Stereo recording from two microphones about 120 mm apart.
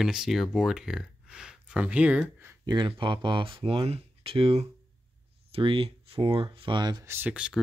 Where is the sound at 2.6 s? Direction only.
40° right (ahead or behind).